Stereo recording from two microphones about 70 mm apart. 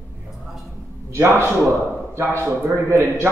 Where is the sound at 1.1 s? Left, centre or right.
Right.